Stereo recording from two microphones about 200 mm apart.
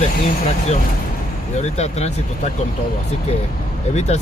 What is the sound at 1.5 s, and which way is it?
Speech, 30° left (ahead or behind).